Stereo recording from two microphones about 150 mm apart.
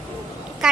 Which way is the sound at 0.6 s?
5° right (ahead or behind).